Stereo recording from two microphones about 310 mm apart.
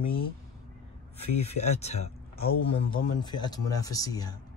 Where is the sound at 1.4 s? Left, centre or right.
Left.